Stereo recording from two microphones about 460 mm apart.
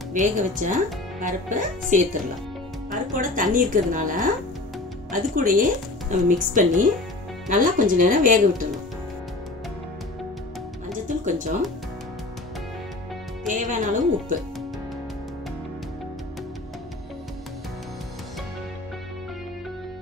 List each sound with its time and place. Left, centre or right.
0.1 s speech: centre
10.9 s music: centre
13.5 s speech: centre